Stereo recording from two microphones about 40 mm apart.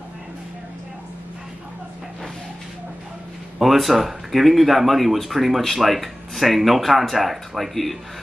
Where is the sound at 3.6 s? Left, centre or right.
Centre.